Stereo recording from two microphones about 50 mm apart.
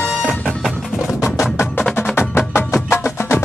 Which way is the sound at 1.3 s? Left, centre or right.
Left.